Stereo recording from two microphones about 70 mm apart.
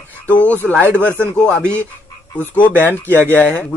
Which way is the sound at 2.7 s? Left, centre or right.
Right.